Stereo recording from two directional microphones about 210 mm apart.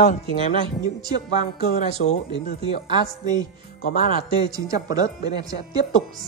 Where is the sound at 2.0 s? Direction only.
60° left (ahead or behind).